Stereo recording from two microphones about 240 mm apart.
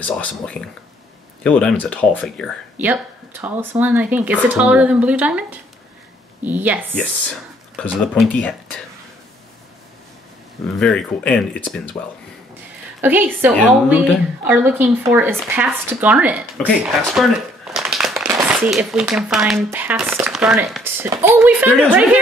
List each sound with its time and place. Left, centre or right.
0.0 s speech: centre
2.8 s a woman's voice: centre
8.1 s speech: centre
10.8 s speech: centre
13.0 s a woman's voice: centre